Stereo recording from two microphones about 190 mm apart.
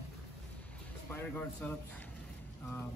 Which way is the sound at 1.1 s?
10° left (ahead or behind).